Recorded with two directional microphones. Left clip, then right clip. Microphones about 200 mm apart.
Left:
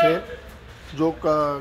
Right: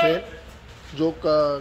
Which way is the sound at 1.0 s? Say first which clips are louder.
Right 1 dB; 25° left (ahead or behind).